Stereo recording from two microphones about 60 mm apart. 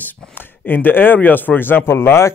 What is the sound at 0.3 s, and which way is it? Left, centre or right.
A man's voice, left.